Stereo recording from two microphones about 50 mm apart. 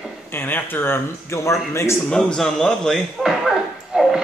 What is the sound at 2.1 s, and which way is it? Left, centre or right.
Speech, centre.